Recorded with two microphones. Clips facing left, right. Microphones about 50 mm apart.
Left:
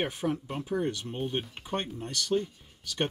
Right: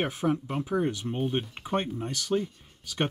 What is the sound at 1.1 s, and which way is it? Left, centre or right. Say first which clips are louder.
Speech: right 3 dB; centre.